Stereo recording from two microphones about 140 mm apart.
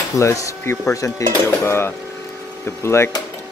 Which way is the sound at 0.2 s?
20° left (ahead or behind).